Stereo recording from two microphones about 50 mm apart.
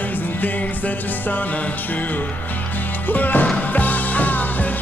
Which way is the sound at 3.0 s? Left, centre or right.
Left.